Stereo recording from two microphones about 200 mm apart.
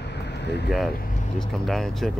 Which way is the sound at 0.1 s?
60° left (ahead or behind).